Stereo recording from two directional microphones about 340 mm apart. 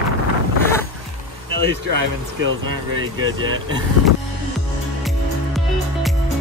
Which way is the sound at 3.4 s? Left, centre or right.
Right.